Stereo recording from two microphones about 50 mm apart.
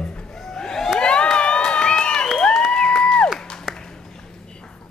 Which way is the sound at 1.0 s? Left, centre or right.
Left.